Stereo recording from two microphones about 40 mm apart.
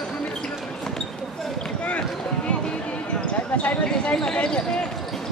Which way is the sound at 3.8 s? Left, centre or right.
Left.